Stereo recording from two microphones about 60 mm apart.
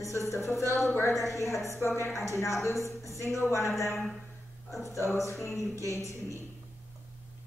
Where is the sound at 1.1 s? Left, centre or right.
Left.